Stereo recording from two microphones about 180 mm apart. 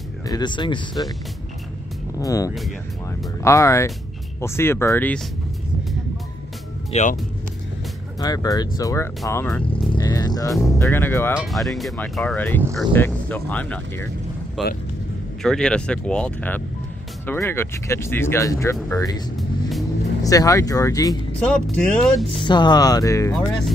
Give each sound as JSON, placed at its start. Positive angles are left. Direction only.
{"t": 0.3, "sound": "speech", "side_deg": 25}
{"t": 2.1, "sound": "speech", "side_deg": 20}
{"t": 6.9, "sound": "speech", "side_deg": 40}
{"t": 8.2, "sound": "speech", "side_deg": 20}
{"t": 9.7, "sound": "vehicle", "side_deg": 25}
{"t": 10.6, "sound": "speech", "side_deg": 15}
{"t": 11.3, "sound": "speech", "side_deg": 0}
{"t": 20.2, "sound": "speech", "side_deg": 20}
{"t": 21.4, "sound": "speech", "side_deg": 5}
{"t": 22.4, "sound": "speech", "side_deg": 25}